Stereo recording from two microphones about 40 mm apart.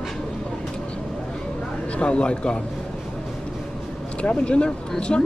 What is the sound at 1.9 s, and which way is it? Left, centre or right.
Speech, left.